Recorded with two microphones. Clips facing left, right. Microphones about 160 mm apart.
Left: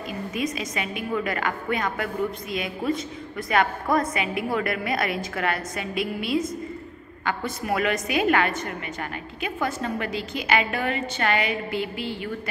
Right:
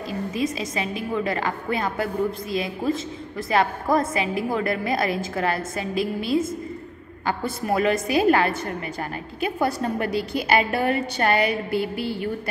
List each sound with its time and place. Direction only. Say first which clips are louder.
0.3 s a woman's voice: right 2 dB; 30° right (ahead or behind)